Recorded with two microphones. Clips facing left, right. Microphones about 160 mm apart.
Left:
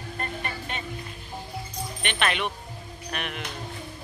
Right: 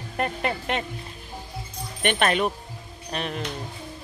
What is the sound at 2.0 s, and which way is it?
Speech, 50° right (ahead or behind).